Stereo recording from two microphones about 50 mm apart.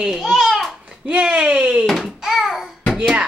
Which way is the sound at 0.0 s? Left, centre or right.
Centre.